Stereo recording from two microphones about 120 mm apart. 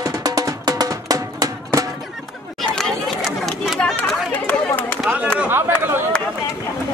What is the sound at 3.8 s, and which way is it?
Chatter, 10° left (ahead or behind).